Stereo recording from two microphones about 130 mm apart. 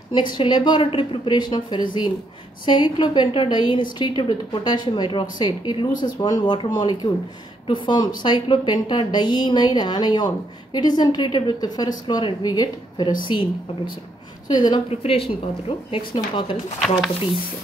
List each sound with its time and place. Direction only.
0.1 s a woman's voice: 35° left (ahead or behind)
14.9 s a woman's voice: 45° left (ahead or behind)